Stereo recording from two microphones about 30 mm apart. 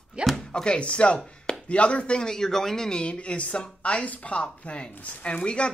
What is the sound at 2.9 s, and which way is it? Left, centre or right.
A woman's voice, left.